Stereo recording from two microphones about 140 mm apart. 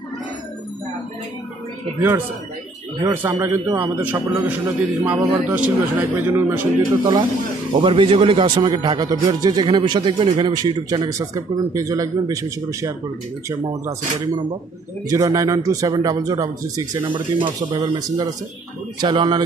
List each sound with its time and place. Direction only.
2.0 s a man's voice: 15° right (ahead or behind)
5.1 s a man's voice: 25° right (ahead or behind)
5.5 s a man's voice: 10° right (ahead or behind)
7.7 s speech: 40° right (ahead or behind)
11.1 s a man's voice: 25° right (ahead or behind)